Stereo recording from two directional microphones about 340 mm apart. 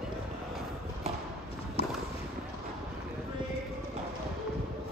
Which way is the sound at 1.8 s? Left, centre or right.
Centre.